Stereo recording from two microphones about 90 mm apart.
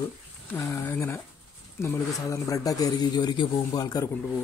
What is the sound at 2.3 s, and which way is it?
A man's voice, 40° left (ahead or behind).